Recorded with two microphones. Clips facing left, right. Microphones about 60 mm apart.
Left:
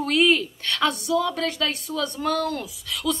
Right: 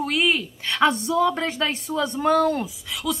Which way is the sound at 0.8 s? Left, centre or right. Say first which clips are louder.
Right 4 dB; right.